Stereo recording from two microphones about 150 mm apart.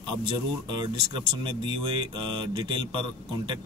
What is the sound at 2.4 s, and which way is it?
A man's voice, 30° right (ahead or behind).